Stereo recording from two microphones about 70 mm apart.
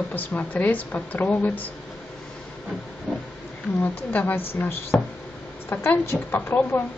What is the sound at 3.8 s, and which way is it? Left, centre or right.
Speech, left.